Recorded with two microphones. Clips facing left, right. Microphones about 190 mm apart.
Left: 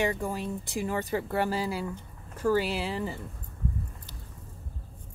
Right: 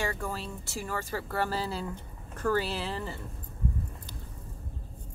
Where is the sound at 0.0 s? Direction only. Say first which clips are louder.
Left 5 dB; 15° left (ahead or behind).